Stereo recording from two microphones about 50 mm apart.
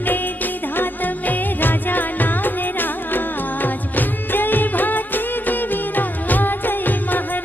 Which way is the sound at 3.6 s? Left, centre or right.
Left.